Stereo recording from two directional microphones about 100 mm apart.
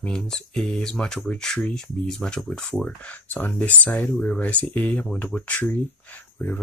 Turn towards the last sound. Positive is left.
turn(degrees=15)  # may be behind; listen again after turning